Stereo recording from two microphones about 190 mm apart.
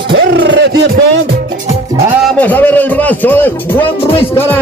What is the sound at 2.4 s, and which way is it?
A man's voice, 10° left (ahead or behind).